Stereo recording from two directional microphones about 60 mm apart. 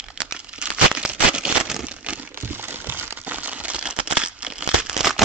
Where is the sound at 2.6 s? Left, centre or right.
Right.